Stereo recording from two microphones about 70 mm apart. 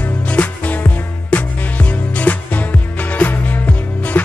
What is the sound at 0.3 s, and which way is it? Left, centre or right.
Music, left.